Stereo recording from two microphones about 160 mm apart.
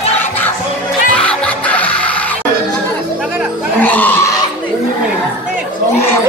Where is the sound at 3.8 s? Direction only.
10° left (ahead or behind).